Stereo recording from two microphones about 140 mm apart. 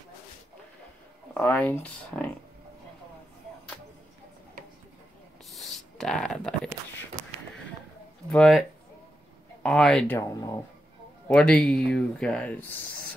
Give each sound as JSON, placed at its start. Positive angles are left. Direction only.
{"t": 1.3, "sound": "speech", "side_deg": 15}
{"t": 5.5, "sound": "a sound", "side_deg": 0}
{"t": 8.3, "sound": "speech", "side_deg": 0}
{"t": 10.1, "sound": "speech", "side_deg": 20}
{"t": 11.2, "sound": "speech", "side_deg": 5}